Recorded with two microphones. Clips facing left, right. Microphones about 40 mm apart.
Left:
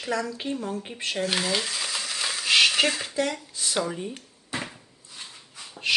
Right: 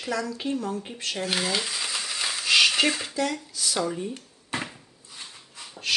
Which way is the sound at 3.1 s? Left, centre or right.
Centre.